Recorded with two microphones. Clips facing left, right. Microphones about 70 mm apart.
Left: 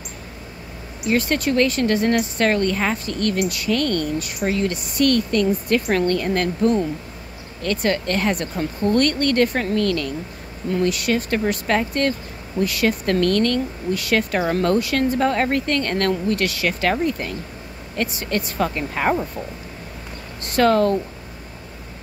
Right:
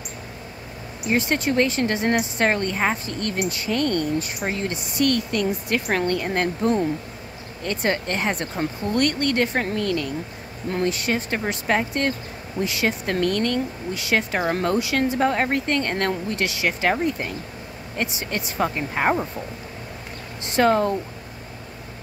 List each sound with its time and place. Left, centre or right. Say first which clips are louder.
1.1 s a woman's voice: left 2 dB; right
10.7 s a woman's voice: left 3 dB; right
17.9 s speech: left 3 dB; centre
20.4 s speech: left 2 dB; centre